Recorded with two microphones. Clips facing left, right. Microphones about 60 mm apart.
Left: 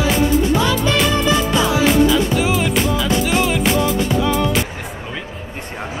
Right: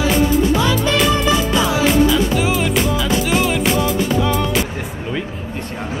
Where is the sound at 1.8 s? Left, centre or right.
Centre.